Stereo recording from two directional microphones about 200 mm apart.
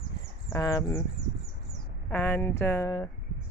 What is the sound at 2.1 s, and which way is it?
Speech, 10° left (ahead or behind).